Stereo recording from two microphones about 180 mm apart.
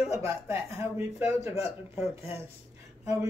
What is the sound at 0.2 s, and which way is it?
Speech, 15° right (ahead or behind).